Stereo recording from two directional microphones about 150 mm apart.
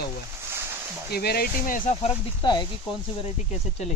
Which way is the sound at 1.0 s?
90° left.